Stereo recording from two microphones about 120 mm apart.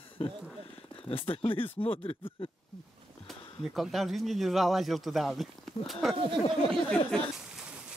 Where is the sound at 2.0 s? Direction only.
50° left (ahead or behind).